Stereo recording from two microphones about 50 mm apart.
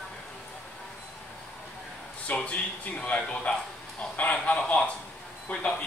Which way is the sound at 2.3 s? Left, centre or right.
Left.